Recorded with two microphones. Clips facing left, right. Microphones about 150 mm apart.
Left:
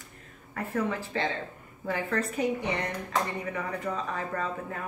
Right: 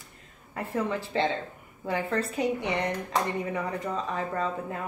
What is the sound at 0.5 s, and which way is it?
A woman's voice, 20° right (ahead or behind).